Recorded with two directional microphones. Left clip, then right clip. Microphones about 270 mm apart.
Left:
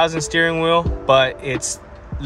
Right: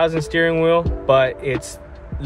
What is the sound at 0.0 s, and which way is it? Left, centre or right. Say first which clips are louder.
Speech: even; centre.